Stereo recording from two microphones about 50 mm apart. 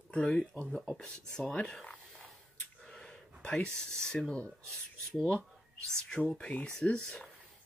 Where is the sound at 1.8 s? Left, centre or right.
Left.